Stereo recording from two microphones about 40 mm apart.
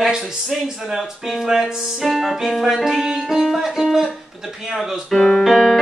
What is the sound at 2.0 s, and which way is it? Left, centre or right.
Music, centre.